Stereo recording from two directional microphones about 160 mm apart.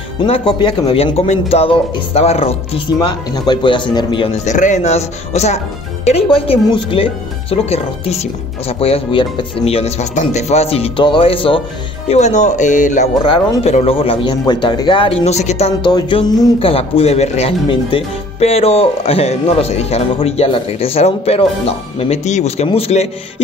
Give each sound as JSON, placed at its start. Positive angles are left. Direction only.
{"t": 0.2, "sound": "a man's voice", "side_deg": 30}
{"t": 4.5, "sound": "a man's voice", "side_deg": 50}
{"t": 12.1, "sound": "a man's voice", "side_deg": 45}
{"t": 15.8, "sound": "a man's voice", "side_deg": 25}